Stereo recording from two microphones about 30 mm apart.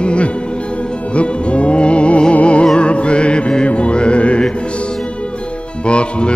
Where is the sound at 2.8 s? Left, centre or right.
Left.